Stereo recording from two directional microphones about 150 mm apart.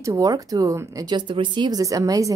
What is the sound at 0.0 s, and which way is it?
Speech, 20° right (ahead or behind).